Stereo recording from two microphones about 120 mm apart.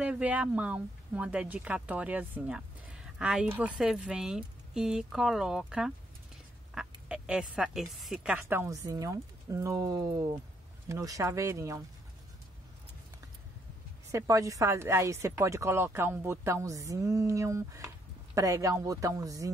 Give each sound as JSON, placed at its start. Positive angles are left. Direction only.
{"t": 0.0, "sound": "a woman's voice", "side_deg": -10}
{"t": 14.1, "sound": "a woman's voice", "side_deg": -25}